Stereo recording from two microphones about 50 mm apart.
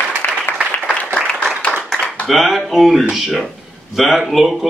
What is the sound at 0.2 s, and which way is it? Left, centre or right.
Applause, left.